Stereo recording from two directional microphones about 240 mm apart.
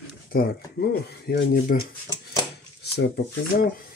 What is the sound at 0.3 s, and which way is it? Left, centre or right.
Speech, left.